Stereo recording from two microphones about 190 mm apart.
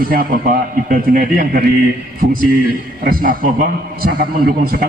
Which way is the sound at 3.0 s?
50° right (ahead or behind).